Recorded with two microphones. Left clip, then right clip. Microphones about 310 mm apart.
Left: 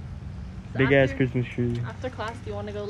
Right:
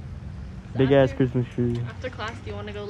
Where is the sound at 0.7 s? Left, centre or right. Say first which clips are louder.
Right 1 dB; centre.